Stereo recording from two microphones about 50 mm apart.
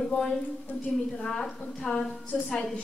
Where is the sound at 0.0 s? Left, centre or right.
Centre.